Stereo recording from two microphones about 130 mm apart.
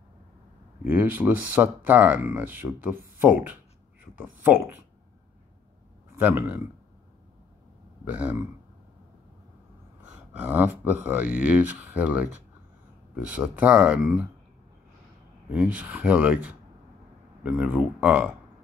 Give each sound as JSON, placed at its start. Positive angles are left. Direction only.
{"t": 0.8, "sound": "speech", "side_deg": -15}
{"t": 6.1, "sound": "speech", "side_deg": -15}
{"t": 8.0, "sound": "speech", "side_deg": -15}
{"t": 10.0, "sound": "speech", "side_deg": -10}
{"t": 15.5, "sound": "speech", "side_deg": -10}